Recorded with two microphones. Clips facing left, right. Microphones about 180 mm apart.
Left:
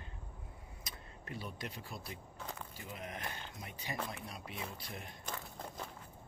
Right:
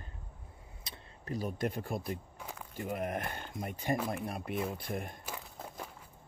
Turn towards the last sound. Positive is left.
turn(degrees=-10)  # may be behind; listen again after turning